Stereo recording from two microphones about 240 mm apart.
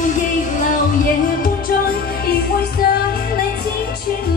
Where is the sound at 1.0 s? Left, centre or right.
Left.